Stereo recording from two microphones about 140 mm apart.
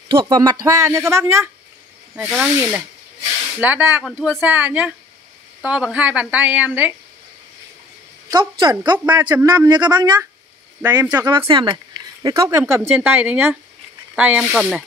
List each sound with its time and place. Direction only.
0.1 s speech: 30° right (ahead or behind)
2.2 s a woman's voice: 5° right (ahead or behind)
4.0 s speech: centre (ahead or behind)
4.4 s a woman's voice: 10° right (ahead or behind)
8.3 s a woman's voice: 35° right (ahead or behind); by 14.9 s 5° right (ahead or behind)